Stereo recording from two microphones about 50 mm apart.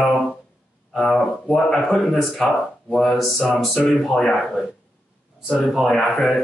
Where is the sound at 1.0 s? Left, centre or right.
Centre.